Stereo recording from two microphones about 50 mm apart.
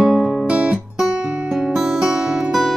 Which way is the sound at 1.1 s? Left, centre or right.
Centre.